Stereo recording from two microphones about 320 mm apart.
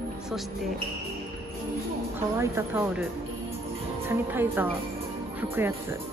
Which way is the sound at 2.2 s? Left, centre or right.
Centre.